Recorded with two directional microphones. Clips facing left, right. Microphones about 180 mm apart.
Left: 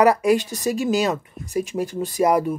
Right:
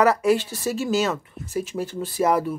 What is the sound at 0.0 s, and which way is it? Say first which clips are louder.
Speech: left 2 dB; 15° left (ahead or behind).